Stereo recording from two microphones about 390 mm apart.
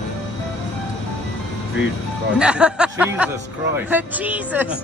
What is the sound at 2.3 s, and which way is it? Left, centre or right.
Speech, centre.